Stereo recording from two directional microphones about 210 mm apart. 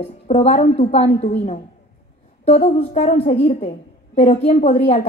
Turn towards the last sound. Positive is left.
turn(degrees=30)  # may be behind; listen again after turning